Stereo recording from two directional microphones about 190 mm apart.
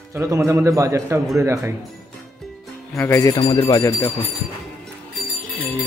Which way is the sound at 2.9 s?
10° left (ahead or behind).